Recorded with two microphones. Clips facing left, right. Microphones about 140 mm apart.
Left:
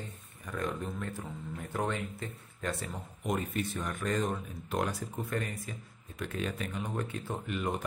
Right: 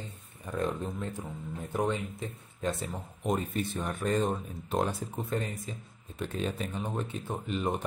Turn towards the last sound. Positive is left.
turn(degrees=-25)  # may be behind; listen again after turning